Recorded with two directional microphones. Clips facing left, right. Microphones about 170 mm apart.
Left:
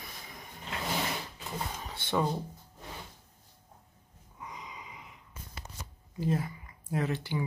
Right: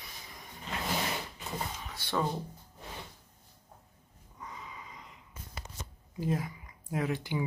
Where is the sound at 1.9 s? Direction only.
25° left (ahead or behind).